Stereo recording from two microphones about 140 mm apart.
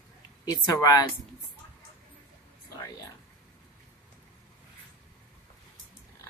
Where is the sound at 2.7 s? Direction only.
25° left (ahead or behind).